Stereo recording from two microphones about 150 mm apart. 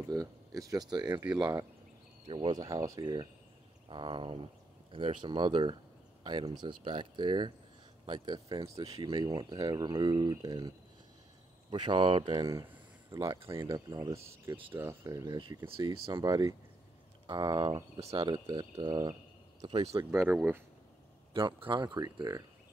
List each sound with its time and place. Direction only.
0.1 s speech: 25° right (ahead or behind)
8.8 s speech: 40° right (ahead or behind)
9.1 s speech: 25° right (ahead or behind)
11.7 s speech: 30° right (ahead or behind)
13.1 s speech: 20° right (ahead or behind)
21.3 s speech: 35° right (ahead or behind)